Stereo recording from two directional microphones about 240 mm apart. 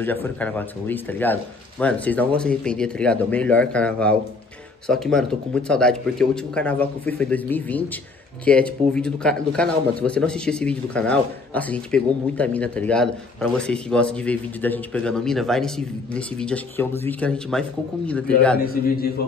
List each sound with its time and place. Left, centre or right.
0.0 s speech: centre
18.7 s a man's voice: left